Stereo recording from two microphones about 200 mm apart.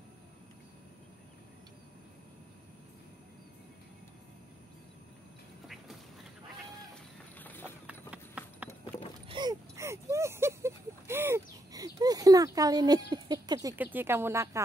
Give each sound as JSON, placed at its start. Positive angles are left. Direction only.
{"t": 7.3, "sound": "clip-clop", "side_deg": 10}
{"t": 7.8, "sound": "clip-clop", "side_deg": -5}
{"t": 9.3, "sound": "a sound", "side_deg": -20}
{"t": 13.9, "sound": "speech", "side_deg": -10}